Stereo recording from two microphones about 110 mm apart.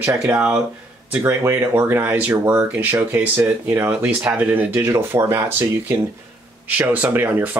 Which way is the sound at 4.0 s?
15° right (ahead or behind).